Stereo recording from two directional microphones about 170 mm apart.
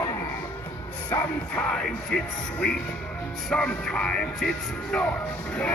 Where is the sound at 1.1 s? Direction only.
10° left (ahead or behind).